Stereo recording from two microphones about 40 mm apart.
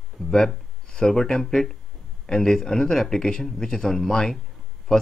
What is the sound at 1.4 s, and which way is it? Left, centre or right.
Speech, centre.